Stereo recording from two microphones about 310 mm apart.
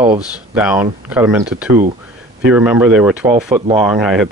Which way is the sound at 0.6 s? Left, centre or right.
Centre.